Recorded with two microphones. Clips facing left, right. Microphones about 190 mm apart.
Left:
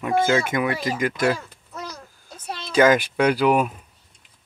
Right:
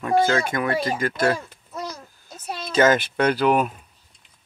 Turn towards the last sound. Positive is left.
turn(degrees=10)  # may be behind; listen again after turning